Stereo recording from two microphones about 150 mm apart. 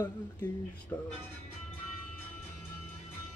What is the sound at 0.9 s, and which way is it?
Speech, 20° left (ahead or behind).